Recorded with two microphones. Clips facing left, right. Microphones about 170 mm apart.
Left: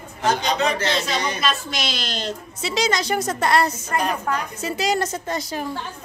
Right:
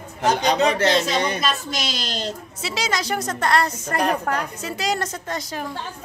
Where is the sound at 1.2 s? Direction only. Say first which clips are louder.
Right 1 dB; 50° right (ahead or behind).